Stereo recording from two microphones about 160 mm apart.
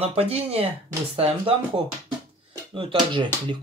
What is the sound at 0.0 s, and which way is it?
Speech, 40° right (ahead or behind).